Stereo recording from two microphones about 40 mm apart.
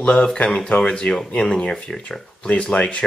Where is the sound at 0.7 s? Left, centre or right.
Left.